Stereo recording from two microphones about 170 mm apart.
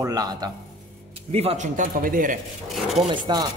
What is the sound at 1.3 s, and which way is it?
Speech, 40° right (ahead or behind).